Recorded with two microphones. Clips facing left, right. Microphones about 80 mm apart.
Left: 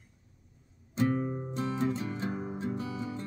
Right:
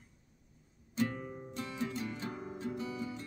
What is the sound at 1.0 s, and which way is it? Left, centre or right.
Music, left.